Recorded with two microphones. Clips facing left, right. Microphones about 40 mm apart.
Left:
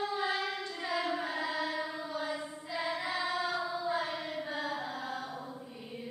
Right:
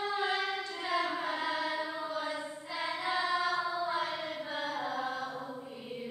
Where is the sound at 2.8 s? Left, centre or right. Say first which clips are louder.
Right 2 dB; right.